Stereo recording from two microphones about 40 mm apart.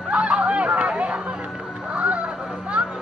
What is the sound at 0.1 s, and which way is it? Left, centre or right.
Run, right.